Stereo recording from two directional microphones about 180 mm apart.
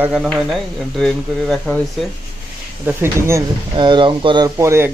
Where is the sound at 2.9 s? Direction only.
15° right (ahead or behind).